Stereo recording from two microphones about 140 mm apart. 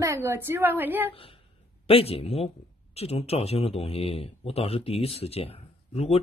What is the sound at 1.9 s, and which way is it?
A man's voice, 45° left (ahead or behind).